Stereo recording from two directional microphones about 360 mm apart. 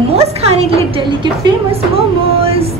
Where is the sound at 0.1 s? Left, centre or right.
Centre.